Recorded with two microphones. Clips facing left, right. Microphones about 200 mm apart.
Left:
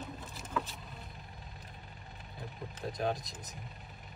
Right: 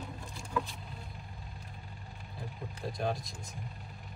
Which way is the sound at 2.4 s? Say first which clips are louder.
Even; centre (ahead or behind).